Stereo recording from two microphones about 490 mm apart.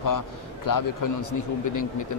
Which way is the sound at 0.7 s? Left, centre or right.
Left.